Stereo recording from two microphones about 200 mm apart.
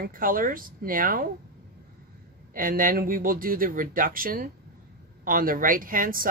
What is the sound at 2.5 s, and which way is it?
Speech, 45° right (ahead or behind).